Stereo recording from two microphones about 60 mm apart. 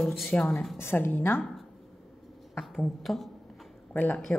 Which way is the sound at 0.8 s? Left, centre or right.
Left.